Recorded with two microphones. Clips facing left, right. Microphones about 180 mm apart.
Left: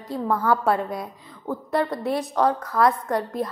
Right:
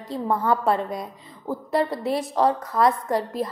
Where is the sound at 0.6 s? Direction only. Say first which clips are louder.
Even; centre (ahead or behind).